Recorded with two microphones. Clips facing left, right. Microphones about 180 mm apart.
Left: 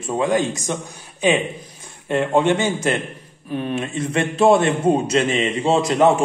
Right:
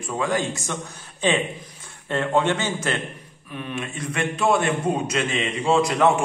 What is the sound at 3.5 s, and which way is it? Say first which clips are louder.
A man's voice: left 7 dB; 35° left (ahead or behind).